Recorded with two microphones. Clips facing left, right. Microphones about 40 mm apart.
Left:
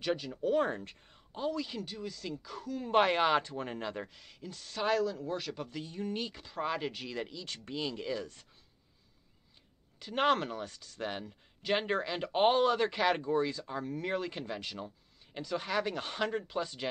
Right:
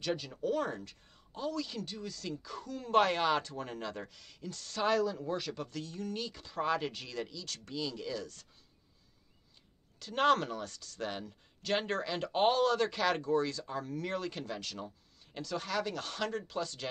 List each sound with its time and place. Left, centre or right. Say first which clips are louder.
0.0 s speech: left 2 dB; centre
0.6 s speech: left 4 dB; left
6.4 s speech: right 4 dB; centre
9.9 s speech: right 1 dB; centre